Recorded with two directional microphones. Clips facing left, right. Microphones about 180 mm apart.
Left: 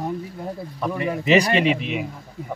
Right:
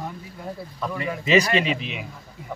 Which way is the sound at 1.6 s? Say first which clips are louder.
Left 6 dB; 50° left (ahead or behind).